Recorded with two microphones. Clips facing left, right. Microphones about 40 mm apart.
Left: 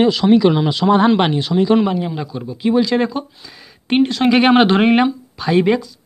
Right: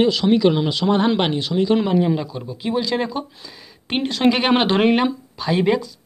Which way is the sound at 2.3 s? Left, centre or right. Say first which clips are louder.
Left 7 dB; centre.